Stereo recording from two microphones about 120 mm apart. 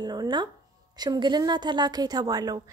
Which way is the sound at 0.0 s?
35° right (ahead or behind).